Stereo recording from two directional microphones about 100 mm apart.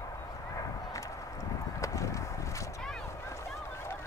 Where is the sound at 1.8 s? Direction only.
30° left (ahead or behind).